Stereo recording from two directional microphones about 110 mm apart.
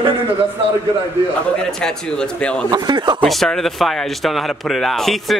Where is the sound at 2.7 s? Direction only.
40° right (ahead or behind).